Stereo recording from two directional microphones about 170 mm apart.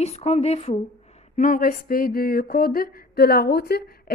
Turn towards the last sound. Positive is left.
turn(degrees=70)  # may be behind; listen again after turning